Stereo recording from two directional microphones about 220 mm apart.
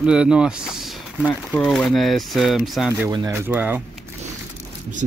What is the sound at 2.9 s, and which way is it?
Speech, 15° right (ahead or behind).